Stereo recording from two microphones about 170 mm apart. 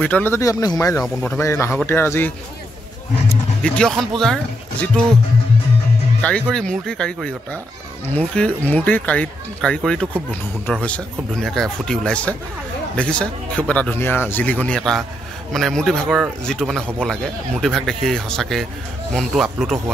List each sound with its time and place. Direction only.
0.0 s speech: 10° left (ahead or behind)
1.0 s speech: 5° left (ahead or behind)
1.4 s speech: 15° left (ahead or behind)
3.6 s speech: 5° left (ahead or behind)
6.4 s speech: 5° left (ahead or behind)